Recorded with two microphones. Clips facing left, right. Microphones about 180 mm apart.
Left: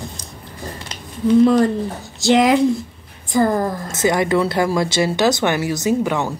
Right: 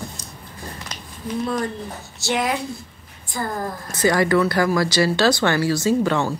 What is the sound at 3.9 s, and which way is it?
Speech, 20° left (ahead or behind).